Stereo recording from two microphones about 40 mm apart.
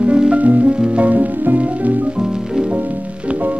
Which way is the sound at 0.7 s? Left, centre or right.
Right.